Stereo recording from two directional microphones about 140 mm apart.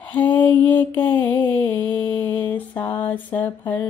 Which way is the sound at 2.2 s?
10° left (ahead or behind).